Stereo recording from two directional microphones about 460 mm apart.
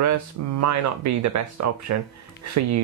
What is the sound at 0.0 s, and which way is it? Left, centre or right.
Speech, right.